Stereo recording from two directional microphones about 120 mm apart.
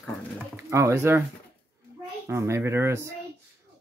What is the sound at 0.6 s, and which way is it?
Speech, 25° right (ahead or behind).